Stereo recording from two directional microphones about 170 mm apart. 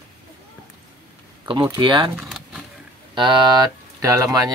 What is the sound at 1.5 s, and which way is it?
Speech, 30° right (ahead or behind).